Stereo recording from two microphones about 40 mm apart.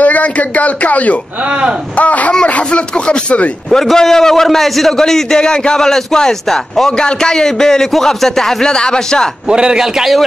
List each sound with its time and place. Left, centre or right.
0.0 s speech: left
3.7 s a man's voice: centre
8.6 s speech: centre
9.5 s a man's voice: centre
9.9 s speech: centre